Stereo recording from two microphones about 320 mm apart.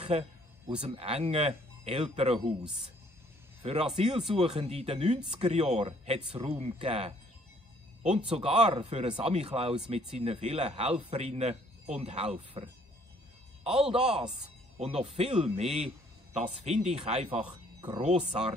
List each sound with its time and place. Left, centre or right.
0.0 s speech: centre
3.9 s a man's voice: centre
8.3 s a man's voice: centre
16.3 s a man's voice: centre